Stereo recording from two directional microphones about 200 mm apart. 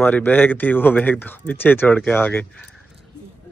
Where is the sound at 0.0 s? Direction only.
10° left (ahead or behind).